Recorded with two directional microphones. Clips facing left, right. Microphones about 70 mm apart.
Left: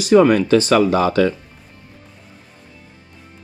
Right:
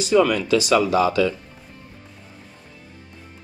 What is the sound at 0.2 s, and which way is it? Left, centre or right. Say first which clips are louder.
Speech: left 5 dB; left.